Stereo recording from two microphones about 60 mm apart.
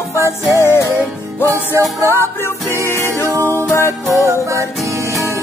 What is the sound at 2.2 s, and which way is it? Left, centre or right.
Music, left.